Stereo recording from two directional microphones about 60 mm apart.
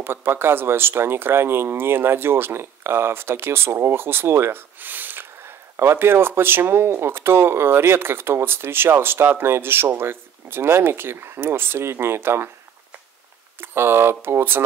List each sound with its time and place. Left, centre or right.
0.0 s speech: right
13.6 s speech: right